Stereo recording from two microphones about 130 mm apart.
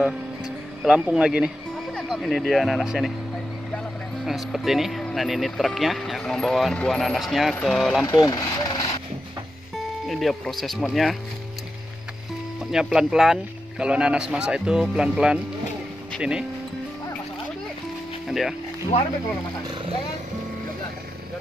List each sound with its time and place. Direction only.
0.8 s a man's voice: 5° right (ahead or behind)
8.1 s speech: 30° left (ahead or behind)
10.0 s speech: centre (ahead or behind)
12.7 s a man's voice: 5° right (ahead or behind)